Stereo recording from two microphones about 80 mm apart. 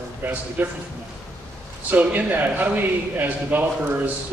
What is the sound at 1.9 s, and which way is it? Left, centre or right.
A man's voice, right.